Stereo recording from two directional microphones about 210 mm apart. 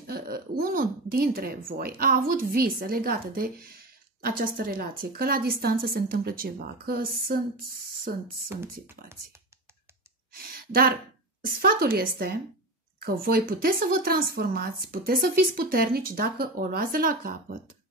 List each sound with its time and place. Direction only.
0.0 s a woman's voice: 45° right (ahead or behind)
10.7 s a woman's voice: 45° right (ahead or behind)